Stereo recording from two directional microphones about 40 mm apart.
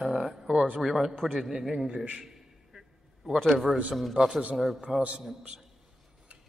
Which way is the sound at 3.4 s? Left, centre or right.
Centre.